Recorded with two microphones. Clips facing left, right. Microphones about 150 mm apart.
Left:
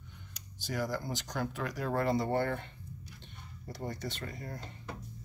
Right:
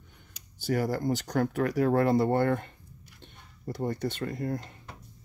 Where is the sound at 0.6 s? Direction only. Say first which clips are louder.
Right 7 dB; 55° right (ahead or behind).